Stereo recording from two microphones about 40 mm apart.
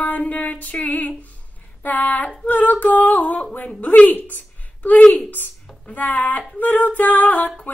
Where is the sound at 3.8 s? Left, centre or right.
Left.